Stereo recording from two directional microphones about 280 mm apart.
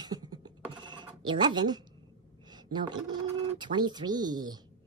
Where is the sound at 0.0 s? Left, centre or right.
Centre.